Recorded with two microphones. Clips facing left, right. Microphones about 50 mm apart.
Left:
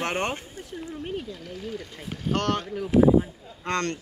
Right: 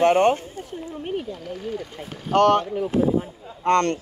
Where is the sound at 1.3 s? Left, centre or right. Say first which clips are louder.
Right 5 dB; centre.